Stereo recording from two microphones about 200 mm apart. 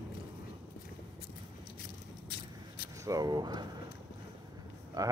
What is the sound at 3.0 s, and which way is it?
Speech, 20° right (ahead or behind).